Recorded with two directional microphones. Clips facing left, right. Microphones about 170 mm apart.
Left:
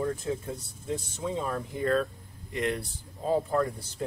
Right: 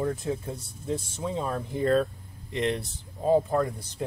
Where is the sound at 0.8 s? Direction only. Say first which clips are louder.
Right 2 dB; 25° right (ahead or behind).